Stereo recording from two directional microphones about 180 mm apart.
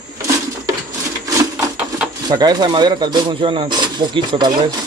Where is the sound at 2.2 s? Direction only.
20° right (ahead or behind).